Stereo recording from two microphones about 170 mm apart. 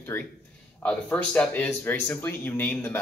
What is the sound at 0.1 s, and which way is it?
Speech, 15° left (ahead or behind).